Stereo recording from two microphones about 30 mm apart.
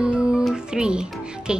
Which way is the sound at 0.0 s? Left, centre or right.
Right.